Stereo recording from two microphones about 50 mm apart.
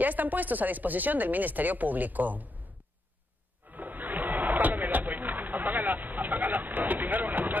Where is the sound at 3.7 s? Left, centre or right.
Right.